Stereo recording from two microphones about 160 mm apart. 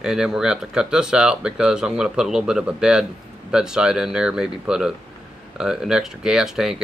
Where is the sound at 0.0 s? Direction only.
5° right (ahead or behind).